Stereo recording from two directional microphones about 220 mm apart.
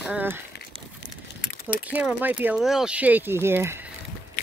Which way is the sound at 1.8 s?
10° right (ahead or behind).